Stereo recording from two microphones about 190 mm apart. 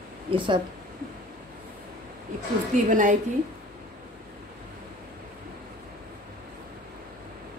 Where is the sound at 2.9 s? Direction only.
40° right (ahead or behind).